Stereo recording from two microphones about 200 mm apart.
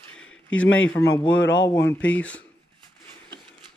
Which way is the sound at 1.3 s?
65° left (ahead or behind).